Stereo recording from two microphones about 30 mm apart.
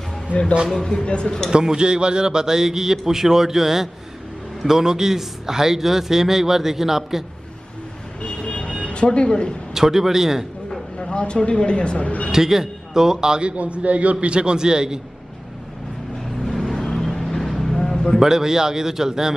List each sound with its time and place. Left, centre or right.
0.7 s speech: left
1.0 s speech: left
1.5 s a man's voice: right
8.5 s vehicle: left
9.8 s a man's voice: centre
11.0 s speech: left
12.0 s speech: left
12.3 s speech: centre
13.4 s a man's voice: right
14.2 s speech: right
16.7 s vehicle: centre
17.7 s vehicle: centre
18.2 s a man's voice: centre